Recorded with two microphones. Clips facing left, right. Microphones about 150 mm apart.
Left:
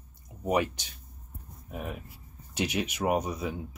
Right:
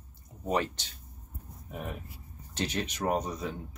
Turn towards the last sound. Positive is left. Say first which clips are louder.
# left 2 dB
turn(degrees=10)  # may be behind; listen again after turning